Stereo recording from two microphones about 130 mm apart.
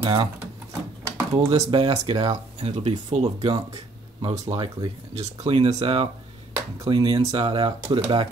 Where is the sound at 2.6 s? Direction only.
50° right (ahead or behind).